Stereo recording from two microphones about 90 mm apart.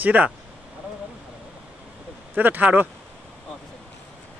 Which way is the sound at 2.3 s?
20° right (ahead or behind).